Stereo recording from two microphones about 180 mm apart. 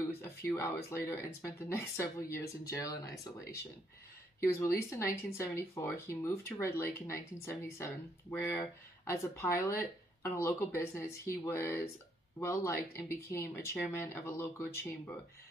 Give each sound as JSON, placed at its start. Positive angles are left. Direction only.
{"t": 0.8, "sound": "speech", "side_deg": 15}
{"t": 4.4, "sound": "speech", "side_deg": 15}